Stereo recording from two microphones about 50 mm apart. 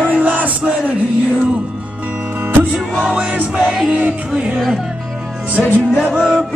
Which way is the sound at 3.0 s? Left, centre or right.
Centre.